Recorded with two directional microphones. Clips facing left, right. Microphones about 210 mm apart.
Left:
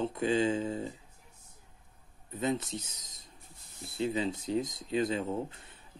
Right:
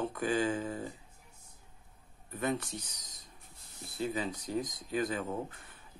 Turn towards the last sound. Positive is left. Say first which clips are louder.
# left 3 dB
turn(degrees=25)  # may be behind; listen again after turning